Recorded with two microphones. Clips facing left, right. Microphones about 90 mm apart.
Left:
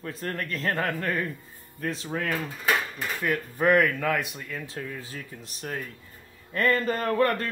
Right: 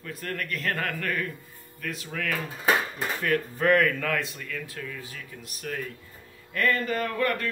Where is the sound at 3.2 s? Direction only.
15° left (ahead or behind).